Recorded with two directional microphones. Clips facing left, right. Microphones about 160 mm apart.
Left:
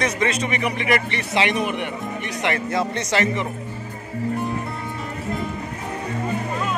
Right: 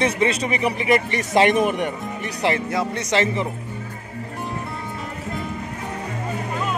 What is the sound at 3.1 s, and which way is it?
Speech, 30° right (ahead or behind).